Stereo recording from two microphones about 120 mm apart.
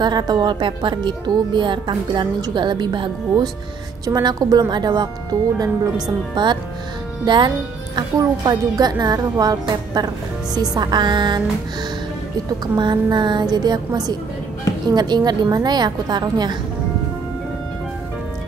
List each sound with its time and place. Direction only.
0.0 s speech: 35° right (ahead or behind)
12.4 s speech: 40° right (ahead or behind)